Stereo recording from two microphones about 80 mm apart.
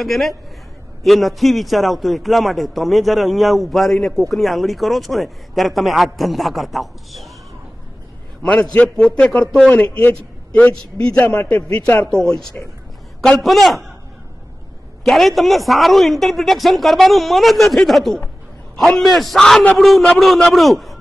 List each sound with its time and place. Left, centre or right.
0.0 s a man's voice: centre
8.4 s a man's voice: centre
15.0 s a man's voice: centre